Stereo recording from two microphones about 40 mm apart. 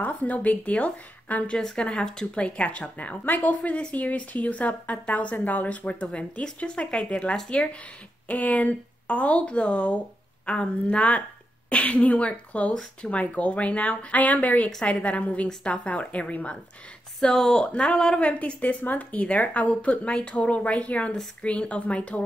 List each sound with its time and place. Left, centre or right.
0.0 s speech: left
1.6 s speech: left
3.3 s a woman's voice: left
8.3 s speech: left
17.2 s speech: centre
17.6 s speech: left
18.2 s speech: left